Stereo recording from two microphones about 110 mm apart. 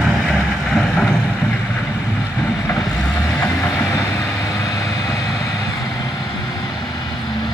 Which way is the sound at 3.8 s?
25° left (ahead or behind).